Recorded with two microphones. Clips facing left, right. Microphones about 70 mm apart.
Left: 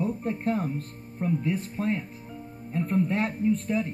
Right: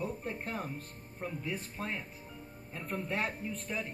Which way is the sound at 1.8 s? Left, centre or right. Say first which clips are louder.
Left 12 dB; left.